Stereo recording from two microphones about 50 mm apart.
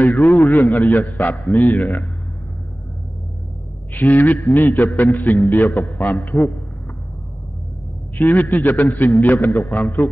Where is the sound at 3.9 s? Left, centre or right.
Left.